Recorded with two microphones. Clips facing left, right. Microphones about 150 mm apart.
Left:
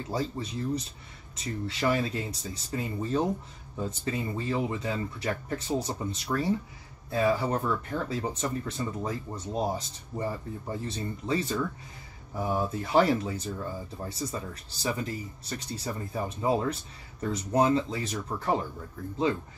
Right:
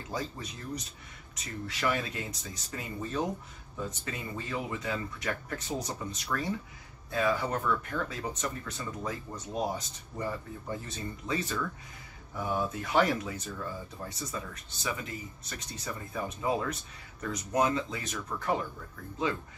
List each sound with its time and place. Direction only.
0.1 s speech: 30° left (ahead or behind)